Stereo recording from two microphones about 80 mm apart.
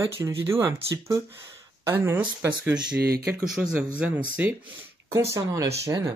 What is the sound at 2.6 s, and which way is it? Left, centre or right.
Speech, centre.